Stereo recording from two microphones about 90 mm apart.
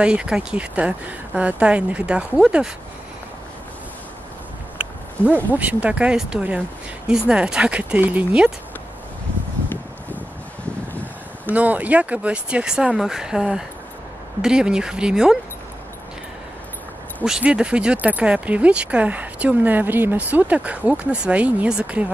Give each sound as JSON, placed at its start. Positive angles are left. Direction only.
{"t": 0.0, "sound": "speech", "side_deg": -10}
{"t": 5.2, "sound": "speech", "side_deg": -20}
{"t": 9.7, "sound": "a sound", "side_deg": 20}
{"t": 11.5, "sound": "speech", "side_deg": -15}
{"t": 17.2, "sound": "speech", "side_deg": -10}